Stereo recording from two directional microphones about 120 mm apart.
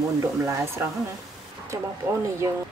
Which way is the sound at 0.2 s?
20° right (ahead or behind).